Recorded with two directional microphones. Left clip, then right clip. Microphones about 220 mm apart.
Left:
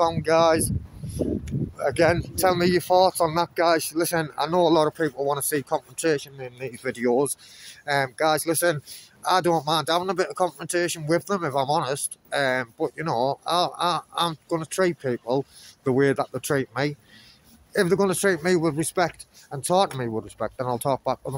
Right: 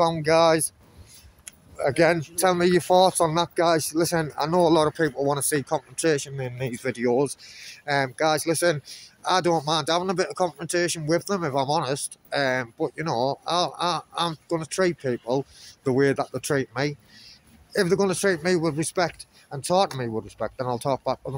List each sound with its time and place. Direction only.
0.0 s speech: 5° right (ahead or behind)
1.8 s speech: centre (ahead or behind)
6.9 s speech: 10° left (ahead or behind)